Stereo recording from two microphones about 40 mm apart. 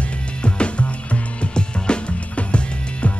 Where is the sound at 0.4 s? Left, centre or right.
Left.